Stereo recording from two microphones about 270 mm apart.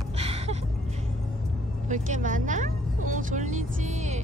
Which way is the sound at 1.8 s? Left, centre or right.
Right.